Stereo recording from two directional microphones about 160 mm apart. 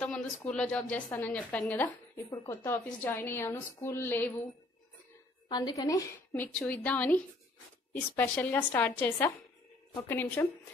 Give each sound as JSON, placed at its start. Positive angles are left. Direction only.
{"t": 0.0, "sound": "a sound", "side_deg": 5}
{"t": 0.5, "sound": "a woman's voice", "side_deg": 5}
{"t": 2.2, "sound": "a woman's voice", "side_deg": 20}
{"t": 5.5, "sound": "a woman's voice", "side_deg": 25}